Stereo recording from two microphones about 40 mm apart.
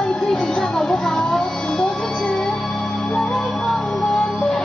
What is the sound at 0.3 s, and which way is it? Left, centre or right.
Music, centre.